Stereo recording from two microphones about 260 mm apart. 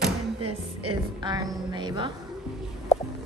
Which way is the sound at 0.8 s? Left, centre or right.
Centre.